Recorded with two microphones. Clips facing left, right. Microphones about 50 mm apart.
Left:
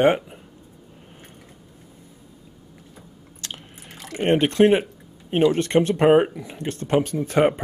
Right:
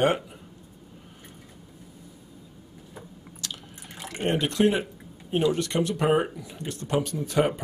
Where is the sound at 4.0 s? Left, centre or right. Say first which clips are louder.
Left 6 dB; centre.